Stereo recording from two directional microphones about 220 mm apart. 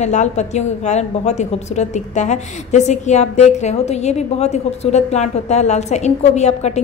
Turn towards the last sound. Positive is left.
turn(degrees=30)  # may be behind; listen again after turning